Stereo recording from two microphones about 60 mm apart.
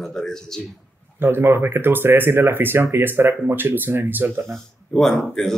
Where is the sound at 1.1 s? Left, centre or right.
Right.